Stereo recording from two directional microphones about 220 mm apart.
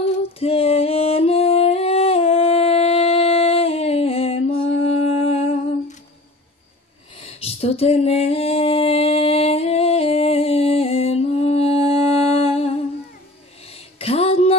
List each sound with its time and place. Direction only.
0.4 s singing: 25° left (ahead or behind)
7.2 s a sound: 25° left (ahead or behind)
13.7 s music: 25° left (ahead or behind)